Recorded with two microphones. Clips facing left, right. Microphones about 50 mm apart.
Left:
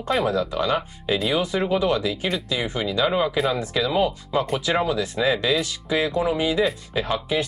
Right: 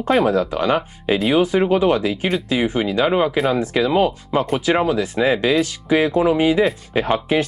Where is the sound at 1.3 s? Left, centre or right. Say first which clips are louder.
Right 8 dB; right.